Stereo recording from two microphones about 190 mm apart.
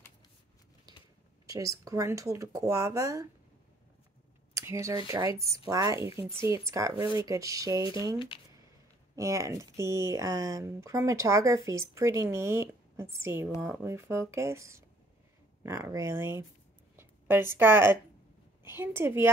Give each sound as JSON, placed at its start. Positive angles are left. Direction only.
{"t": 1.4, "sound": "speech", "side_deg": -15}
{"t": 4.6, "sound": "speech", "side_deg": -15}